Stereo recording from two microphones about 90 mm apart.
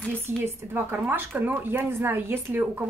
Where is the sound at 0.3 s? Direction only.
25° right (ahead or behind).